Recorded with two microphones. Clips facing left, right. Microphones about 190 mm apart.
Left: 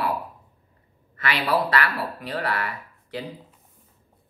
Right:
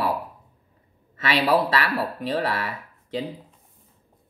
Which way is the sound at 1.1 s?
25° right (ahead or behind).